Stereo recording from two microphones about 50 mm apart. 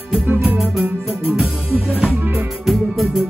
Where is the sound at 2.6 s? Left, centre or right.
Centre.